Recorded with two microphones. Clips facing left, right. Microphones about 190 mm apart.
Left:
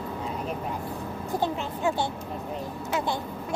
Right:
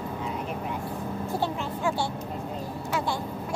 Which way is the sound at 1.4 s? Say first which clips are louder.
Left 2 dB; 20° left (ahead or behind).